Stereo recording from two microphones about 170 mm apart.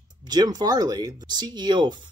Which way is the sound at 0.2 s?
25° right (ahead or behind).